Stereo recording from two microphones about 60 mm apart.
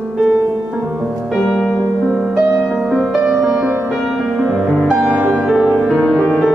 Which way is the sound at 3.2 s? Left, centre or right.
Centre.